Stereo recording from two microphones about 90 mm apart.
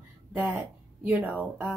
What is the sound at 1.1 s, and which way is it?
Speech, 15° right (ahead or behind).